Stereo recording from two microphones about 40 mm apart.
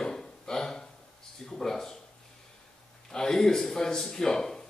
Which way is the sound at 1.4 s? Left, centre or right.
Centre.